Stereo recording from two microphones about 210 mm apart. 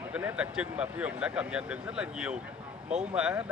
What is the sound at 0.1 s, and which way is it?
Speech, 5° right (ahead or behind).